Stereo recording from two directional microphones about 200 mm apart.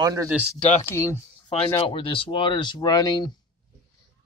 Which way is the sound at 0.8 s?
15° left (ahead or behind).